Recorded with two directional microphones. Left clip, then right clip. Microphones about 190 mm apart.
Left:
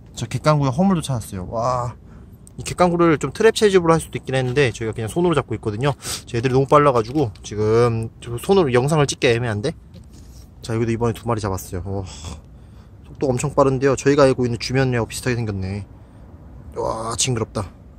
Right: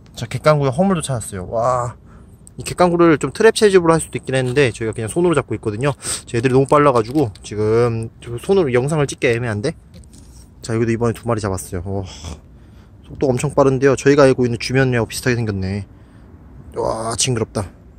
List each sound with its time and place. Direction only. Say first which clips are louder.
0.1 s speech: right 4 dB; 15° right (ahead or behind)